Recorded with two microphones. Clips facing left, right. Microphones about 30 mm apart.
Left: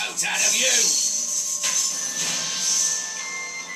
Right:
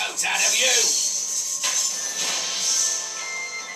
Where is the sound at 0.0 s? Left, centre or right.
Centre.